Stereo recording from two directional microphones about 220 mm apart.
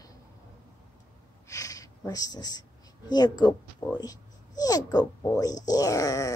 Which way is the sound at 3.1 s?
20° left (ahead or behind).